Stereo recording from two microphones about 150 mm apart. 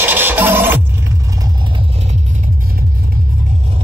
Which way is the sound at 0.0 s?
10° right (ahead or behind).